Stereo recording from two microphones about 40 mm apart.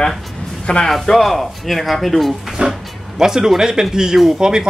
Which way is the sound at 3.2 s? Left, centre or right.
Centre.